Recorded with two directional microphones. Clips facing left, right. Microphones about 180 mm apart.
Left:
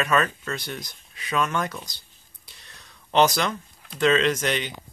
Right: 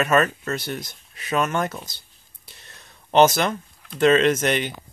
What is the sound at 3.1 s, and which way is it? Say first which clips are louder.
Speech: right 4 dB; 45° right (ahead or behind).